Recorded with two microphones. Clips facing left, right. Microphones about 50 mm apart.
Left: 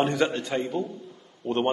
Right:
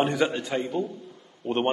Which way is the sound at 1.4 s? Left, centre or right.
Right.